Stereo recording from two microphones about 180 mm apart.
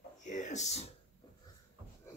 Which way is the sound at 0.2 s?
40° left (ahead or behind).